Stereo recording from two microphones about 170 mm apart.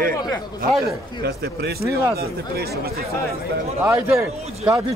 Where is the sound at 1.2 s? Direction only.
70° right (ahead or behind).